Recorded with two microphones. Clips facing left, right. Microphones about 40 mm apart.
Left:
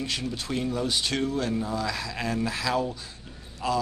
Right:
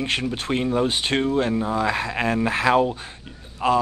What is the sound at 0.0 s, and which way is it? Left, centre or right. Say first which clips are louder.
Speech: right 6 dB; right.